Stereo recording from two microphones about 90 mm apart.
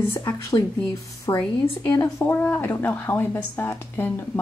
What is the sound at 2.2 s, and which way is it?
A woman's voice, 25° left (ahead or behind).